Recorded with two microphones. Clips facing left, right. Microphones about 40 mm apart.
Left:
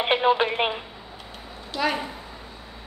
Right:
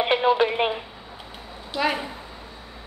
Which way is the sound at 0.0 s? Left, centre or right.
Centre.